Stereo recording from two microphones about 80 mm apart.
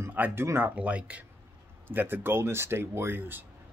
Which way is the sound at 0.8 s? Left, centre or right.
Centre.